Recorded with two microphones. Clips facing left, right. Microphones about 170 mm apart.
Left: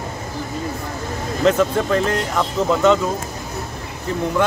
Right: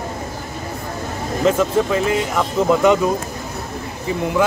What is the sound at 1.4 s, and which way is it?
Speech, 5° right (ahead or behind).